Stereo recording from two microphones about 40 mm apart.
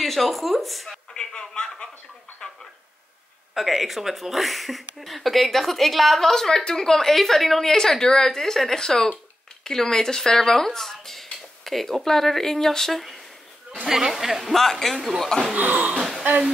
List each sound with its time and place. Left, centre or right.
0.0 s speech: centre
1.1 s a sound: centre
2.4 s telephone: centre
3.5 s a woman's voice: centre
13.8 s speech: centre
14.5 s a woman's voice: centre
15.5 s speech: right
16.0 s speech: centre